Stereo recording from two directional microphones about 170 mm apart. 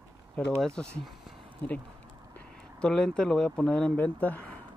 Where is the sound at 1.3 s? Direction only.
Centre (ahead or behind).